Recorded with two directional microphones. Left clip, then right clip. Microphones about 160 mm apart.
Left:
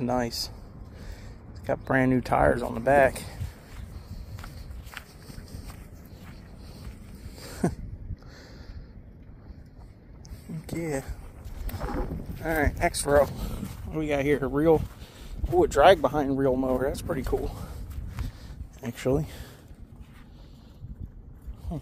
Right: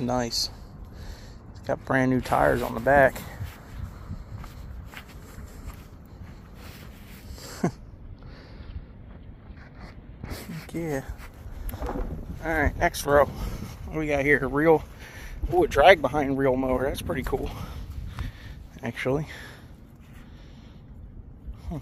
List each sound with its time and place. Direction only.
0.0 s speech: 5° left (ahead or behind)
1.7 s speech: 10° left (ahead or behind)
7.3 s a sound: 15° left (ahead or behind)
10.8 s speech: 30° left (ahead or behind)
12.4 s speech: 30° left (ahead or behind)
18.8 s speech: 45° left (ahead or behind)